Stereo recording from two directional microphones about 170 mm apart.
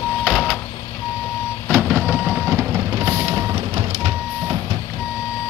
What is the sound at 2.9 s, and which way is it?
Music, 20° right (ahead or behind).